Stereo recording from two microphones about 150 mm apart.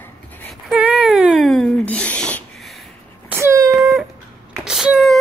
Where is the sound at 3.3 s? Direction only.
15° right (ahead or behind).